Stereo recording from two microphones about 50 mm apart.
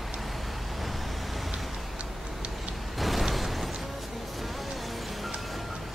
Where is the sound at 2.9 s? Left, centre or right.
Centre.